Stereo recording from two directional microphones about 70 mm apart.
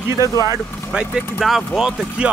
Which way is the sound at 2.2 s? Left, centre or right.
Centre.